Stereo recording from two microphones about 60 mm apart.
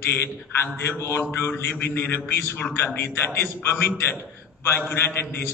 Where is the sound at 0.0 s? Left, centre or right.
Left.